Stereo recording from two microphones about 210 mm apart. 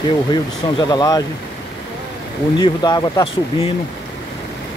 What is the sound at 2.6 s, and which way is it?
Speech, 20° left (ahead or behind).